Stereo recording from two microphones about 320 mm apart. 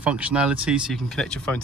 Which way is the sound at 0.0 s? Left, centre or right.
Centre.